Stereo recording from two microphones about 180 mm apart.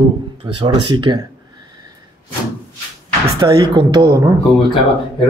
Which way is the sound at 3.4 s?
25° right (ahead or behind).